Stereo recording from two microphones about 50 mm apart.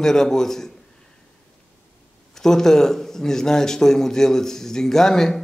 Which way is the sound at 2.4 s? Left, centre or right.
Centre.